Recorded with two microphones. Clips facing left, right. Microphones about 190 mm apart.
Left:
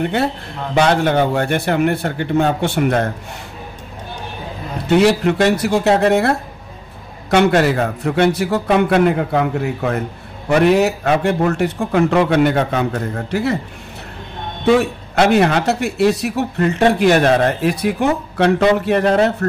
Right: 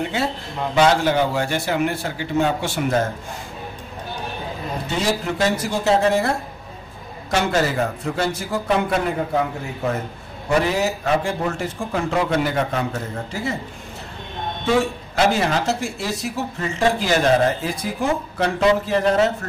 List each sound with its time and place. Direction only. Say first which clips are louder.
0.0 s speech: left 5 dB; 60° left (ahead or behind)
4.8 s a man's voice: left 11 dB; 65° left (ahead or behind)
14.8 s speech: left 3 dB; 65° left (ahead or behind)